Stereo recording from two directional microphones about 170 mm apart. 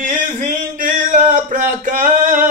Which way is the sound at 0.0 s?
50° right (ahead or behind).